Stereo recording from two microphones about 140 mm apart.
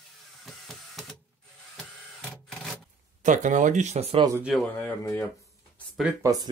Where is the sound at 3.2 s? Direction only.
65° right (ahead or behind).